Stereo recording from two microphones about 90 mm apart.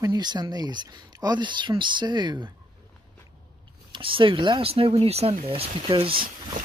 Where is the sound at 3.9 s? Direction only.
75° right (ahead or behind); by 6.1 s 90° right.